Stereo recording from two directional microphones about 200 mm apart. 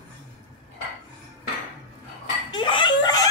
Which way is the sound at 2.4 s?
25° left (ahead or behind).